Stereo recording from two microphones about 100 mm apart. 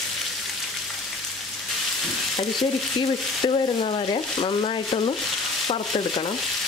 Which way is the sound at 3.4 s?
60° left (ahead or behind).